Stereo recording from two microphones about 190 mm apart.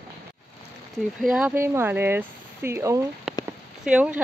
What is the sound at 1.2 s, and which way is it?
Speech, 5° right (ahead or behind).